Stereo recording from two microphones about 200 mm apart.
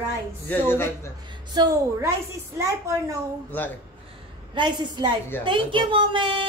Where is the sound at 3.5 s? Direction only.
10° left (ahead or behind).